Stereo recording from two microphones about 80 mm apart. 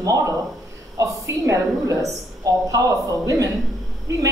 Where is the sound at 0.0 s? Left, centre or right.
Right.